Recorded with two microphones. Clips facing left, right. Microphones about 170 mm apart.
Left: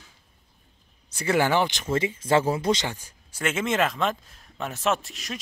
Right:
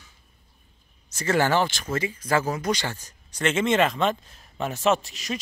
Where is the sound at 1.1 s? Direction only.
10° left (ahead or behind).